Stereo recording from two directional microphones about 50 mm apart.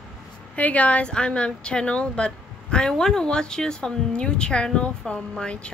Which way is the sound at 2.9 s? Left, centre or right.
Centre.